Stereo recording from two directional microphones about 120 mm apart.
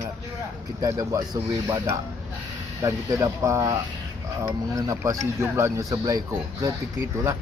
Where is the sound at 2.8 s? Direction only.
25° right (ahead or behind).